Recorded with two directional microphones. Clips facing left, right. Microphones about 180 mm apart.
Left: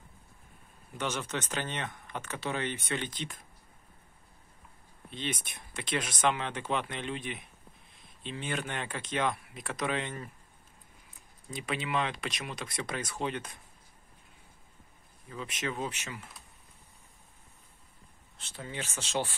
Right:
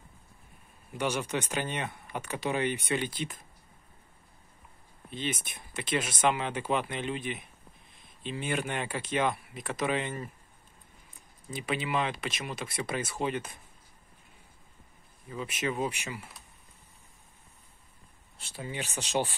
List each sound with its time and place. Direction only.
0.9 s speech: 10° right (ahead or behind)
5.1 s speech: 5° right (ahead or behind)
11.5 s speech: 5° right (ahead or behind)
15.2 s speech: 5° right (ahead or behind)
18.4 s speech: 10° right (ahead or behind)